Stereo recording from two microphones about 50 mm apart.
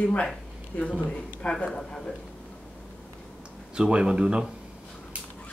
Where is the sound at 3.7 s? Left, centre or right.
Centre.